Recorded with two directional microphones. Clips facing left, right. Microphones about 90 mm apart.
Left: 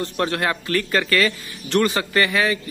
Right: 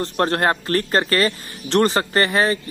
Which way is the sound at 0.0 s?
45° right (ahead or behind).